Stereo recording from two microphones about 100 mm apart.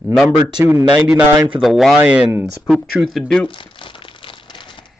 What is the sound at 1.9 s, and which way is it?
Speech, 15° right (ahead or behind).